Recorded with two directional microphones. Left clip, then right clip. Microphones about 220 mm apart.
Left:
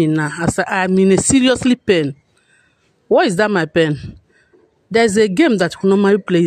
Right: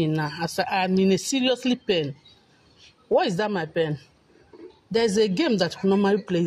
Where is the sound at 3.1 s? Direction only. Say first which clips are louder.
Left 9 dB; 40° left (ahead or behind).